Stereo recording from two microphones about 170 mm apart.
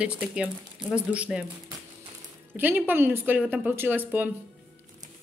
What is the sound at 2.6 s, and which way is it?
Speech, 10° right (ahead or behind).